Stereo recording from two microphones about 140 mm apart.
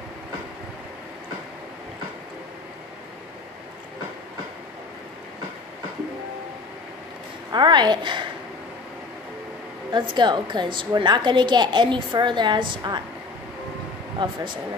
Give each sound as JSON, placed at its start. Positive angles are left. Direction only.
{"t": 7.5, "sound": "a woman's voice", "side_deg": -30}
{"t": 9.8, "sound": "a woman's voice", "side_deg": -35}
{"t": 14.2, "sound": "a woman's voice", "side_deg": -35}